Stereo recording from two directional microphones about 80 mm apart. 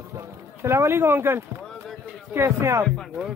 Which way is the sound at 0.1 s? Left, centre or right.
Right.